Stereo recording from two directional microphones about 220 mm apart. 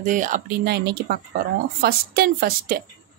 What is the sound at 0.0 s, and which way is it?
A woman's voice, 35° right (ahead or behind).